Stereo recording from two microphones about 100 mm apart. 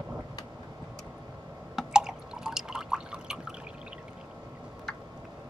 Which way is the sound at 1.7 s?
5° right (ahead or behind).